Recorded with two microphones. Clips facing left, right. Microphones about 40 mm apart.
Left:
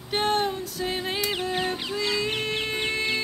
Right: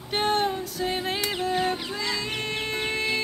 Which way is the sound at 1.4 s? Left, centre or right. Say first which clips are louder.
Right 2 dB; centre.